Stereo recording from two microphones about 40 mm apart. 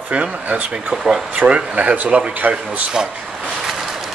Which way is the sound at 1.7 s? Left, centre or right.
Right.